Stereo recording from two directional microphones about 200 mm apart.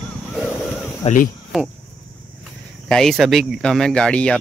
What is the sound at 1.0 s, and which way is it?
Speech, 40° left (ahead or behind).